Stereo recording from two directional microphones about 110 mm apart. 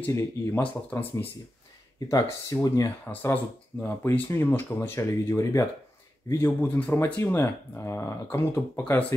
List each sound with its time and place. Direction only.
0.0 s speech: 20° left (ahead or behind)
2.0 s speech: 30° left (ahead or behind)
3.1 s speech: 20° left (ahead or behind)